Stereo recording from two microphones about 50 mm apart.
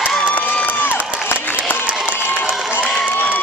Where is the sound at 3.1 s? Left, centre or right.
Left.